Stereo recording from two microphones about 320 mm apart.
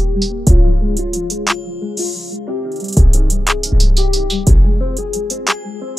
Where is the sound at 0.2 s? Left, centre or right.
Centre.